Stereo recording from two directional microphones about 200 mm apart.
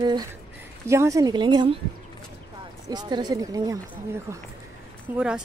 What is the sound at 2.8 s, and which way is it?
Speech, 20° right (ahead or behind).